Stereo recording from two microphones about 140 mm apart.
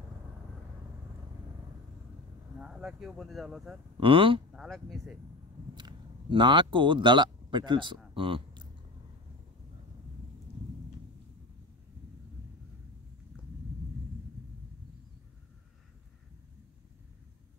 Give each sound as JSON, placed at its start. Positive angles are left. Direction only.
{"t": 2.6, "sound": "speech", "side_deg": -5}
{"t": 4.0, "sound": "speech", "side_deg": -40}
{"t": 4.6, "sound": "speech", "side_deg": 0}
{"t": 5.8, "sound": "speech", "side_deg": -35}
{"t": 8.1, "sound": "a sound", "side_deg": -40}